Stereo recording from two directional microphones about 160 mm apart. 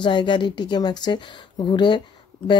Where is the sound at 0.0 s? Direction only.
30° left (ahead or behind).